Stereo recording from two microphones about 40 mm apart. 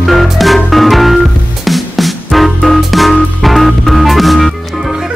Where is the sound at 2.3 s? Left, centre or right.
Centre.